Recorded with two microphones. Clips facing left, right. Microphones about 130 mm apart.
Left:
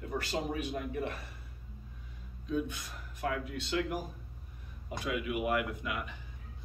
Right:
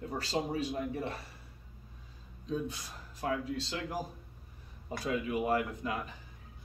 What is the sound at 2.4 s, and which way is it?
Speech, 35° right (ahead or behind).